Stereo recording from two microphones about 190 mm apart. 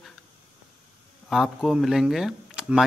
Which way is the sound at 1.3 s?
Centre (ahead or behind).